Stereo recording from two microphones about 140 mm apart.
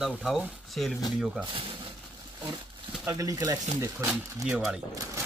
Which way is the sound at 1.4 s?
40° right (ahead or behind).